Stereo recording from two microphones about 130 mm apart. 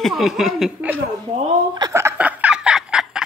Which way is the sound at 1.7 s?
25° right (ahead or behind).